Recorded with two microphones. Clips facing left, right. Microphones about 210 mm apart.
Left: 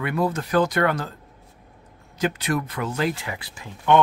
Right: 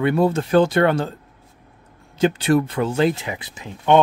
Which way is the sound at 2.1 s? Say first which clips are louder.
Right 7 dB; 30° right (ahead or behind).